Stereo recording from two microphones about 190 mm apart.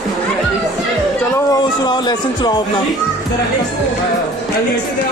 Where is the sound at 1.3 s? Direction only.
20° left (ahead or behind).